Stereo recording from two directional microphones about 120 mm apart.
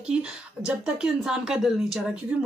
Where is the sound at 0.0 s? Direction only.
10° right (ahead or behind).